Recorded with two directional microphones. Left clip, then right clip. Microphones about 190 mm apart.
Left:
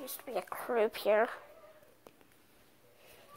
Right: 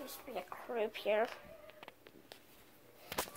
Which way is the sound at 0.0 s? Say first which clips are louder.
Left 6 dB; 50° left (ahead or behind).